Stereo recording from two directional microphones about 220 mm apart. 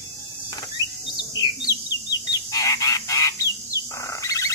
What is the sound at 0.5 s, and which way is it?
Rodents, 20° left (ahead or behind).